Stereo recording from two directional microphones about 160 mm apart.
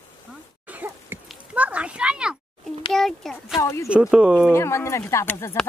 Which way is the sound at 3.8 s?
5° right (ahead or behind).